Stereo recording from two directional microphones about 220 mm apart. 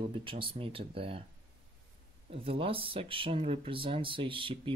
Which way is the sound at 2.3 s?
25° right (ahead or behind).